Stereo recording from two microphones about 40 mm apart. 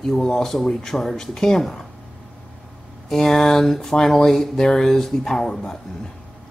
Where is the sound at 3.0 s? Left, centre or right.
Centre.